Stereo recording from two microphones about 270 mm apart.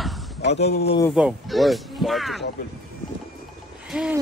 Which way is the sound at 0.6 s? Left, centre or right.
Left.